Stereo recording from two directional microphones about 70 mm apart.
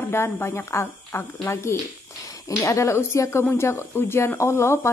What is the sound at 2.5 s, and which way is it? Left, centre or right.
Speech, left.